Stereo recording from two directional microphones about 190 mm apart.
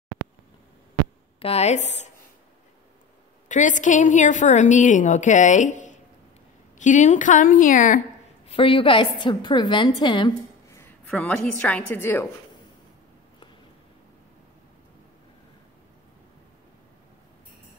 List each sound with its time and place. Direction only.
1.4 s a woman's voice: 35° left (ahead or behind)
3.4 s a woman's voice: 40° left (ahead or behind)
8.5 s a woman's voice: 30° left (ahead or behind)
11.1 s a woman's voice: 5° left (ahead or behind)